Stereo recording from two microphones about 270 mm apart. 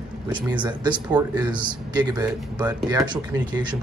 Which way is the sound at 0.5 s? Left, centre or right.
Centre.